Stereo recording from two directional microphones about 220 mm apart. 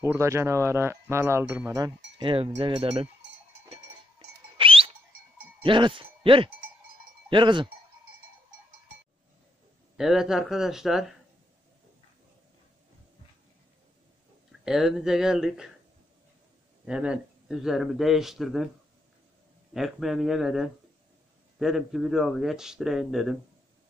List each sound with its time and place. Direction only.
0.0 s speech: 10° right (ahead or behind)
2.1 s cowbell: 25° right (ahead or behind)
4.6 s a sound: 25° right (ahead or behind)
5.6 s wind chime: 20° right (ahead or behind)
7.2 s speech: 20° right (ahead or behind)
9.9 s speech: centre (ahead or behind)
14.6 s speech: centre (ahead or behind)
16.8 s speech: 5° right (ahead or behind)
19.7 s speech: centre (ahead or behind)